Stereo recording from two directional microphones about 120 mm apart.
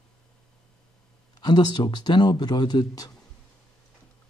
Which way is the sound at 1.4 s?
35° left (ahead or behind).